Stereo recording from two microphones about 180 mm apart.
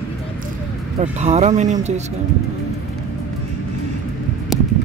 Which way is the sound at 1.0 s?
40° right (ahead or behind).